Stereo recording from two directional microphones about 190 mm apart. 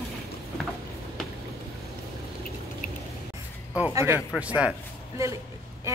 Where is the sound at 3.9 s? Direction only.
15° right (ahead or behind).